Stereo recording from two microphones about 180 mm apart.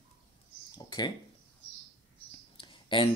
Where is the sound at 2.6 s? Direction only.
25° left (ahead or behind).